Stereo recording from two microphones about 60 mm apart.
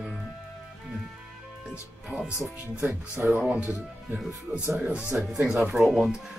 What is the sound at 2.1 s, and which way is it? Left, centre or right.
Music, centre.